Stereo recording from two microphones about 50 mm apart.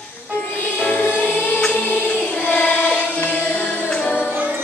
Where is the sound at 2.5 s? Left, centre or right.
Left.